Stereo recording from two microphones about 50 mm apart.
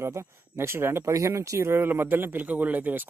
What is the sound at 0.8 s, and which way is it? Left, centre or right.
Speech, right.